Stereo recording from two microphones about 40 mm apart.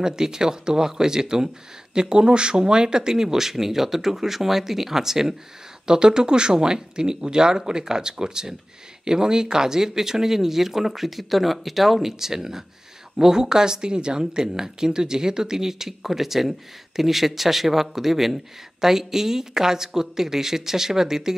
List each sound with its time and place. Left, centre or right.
0.0 s speech: centre